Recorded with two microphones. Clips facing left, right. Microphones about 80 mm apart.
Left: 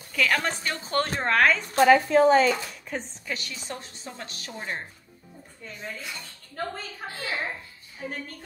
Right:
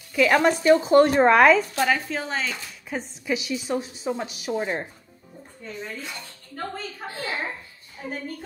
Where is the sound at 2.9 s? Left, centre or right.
Centre.